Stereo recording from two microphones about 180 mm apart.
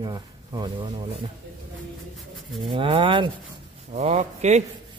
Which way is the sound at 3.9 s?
40° right (ahead or behind).